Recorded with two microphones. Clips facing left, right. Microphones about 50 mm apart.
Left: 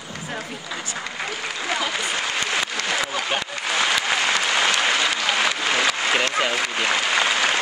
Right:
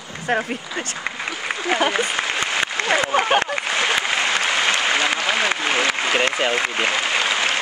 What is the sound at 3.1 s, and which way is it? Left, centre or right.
Speech, right.